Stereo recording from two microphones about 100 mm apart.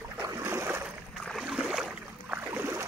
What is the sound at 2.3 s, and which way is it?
Boat, 25° right (ahead or behind).